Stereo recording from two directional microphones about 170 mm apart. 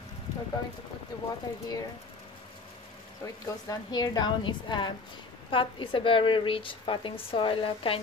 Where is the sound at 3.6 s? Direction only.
25° left (ahead or behind).